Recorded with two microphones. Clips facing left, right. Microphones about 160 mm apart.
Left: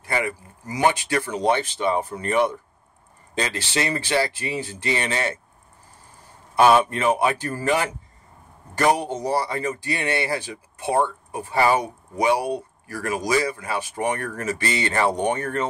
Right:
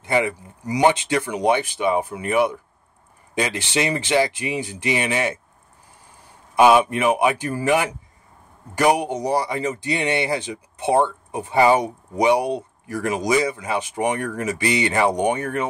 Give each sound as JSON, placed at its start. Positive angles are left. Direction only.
{"t": 0.0, "sound": "speech", "side_deg": -20}
{"t": 6.5, "sound": "speech", "side_deg": -15}